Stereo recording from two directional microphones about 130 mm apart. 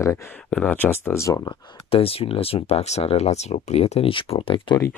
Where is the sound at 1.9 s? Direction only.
45° left (ahead or behind).